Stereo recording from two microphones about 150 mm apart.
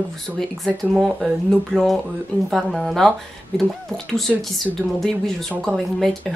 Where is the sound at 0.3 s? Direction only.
15° right (ahead or behind).